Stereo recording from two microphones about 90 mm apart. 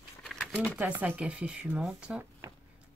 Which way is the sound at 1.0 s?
15° right (ahead or behind).